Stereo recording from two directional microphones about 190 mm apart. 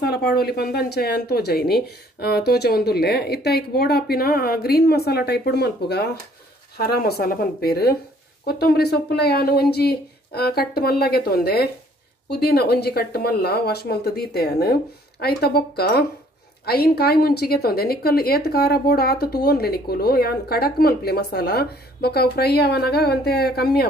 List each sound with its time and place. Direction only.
0.0 s a woman's voice: 55° left (ahead or behind)